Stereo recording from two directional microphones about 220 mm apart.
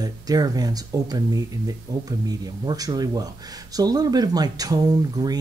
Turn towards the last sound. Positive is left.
turn(degrees=-15)  # may be behind; listen again after turning